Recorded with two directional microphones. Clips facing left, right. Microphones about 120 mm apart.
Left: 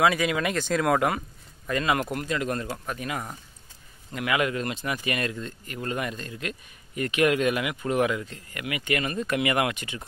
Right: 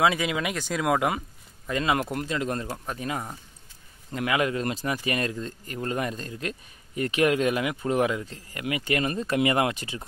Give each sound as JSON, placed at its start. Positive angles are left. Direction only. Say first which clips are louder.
{"t": 0.0, "sound": "speech", "louder": "left 1 dB", "side_deg": -20}